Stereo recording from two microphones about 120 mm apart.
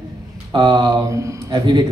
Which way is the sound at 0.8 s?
25° right (ahead or behind).